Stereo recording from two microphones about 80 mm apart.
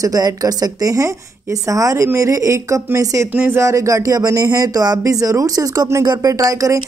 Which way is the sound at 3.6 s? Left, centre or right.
Right.